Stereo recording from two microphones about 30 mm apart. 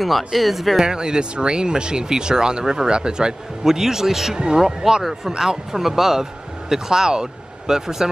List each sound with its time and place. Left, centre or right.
0.0 s speech: centre
0.8 s speech: right
3.6 s speech: centre